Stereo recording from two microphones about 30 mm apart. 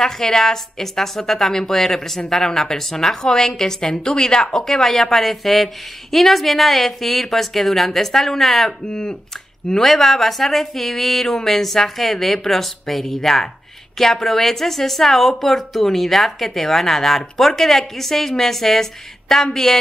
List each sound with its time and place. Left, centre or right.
0.0 s a woman's voice: centre
8.8 s a woman's voice: left
9.8 s a woman's voice: centre